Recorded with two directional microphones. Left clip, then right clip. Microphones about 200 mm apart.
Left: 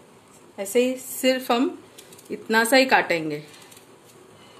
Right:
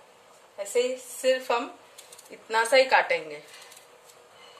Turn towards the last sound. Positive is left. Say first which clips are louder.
# left 3 dB
turn(degrees=35)  # may be behind; listen again after turning